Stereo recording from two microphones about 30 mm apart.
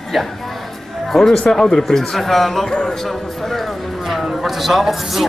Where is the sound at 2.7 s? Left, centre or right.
Left.